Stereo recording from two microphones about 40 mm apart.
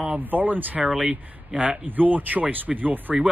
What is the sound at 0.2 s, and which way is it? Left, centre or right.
Speech, right.